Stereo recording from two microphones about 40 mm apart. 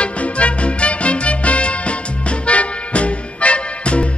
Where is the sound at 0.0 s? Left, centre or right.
Left.